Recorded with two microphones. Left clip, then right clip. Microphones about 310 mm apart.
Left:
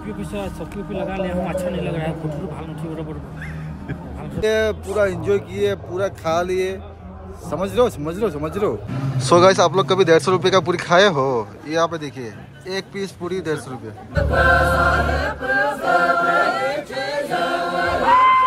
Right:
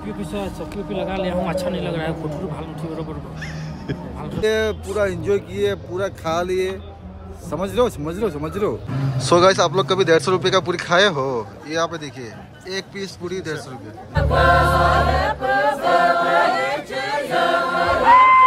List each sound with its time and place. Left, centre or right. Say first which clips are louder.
0.2 s a man's voice: right 1 dB; centre
14.1 s choir: even; right
15.0 s music: right 2 dB; right
16.3 s choir: right 1 dB; centre